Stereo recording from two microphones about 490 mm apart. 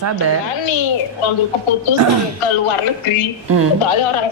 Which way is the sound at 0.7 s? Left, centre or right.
Left.